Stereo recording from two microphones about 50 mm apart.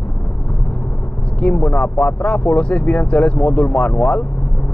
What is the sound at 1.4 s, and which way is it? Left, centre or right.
Speech, left.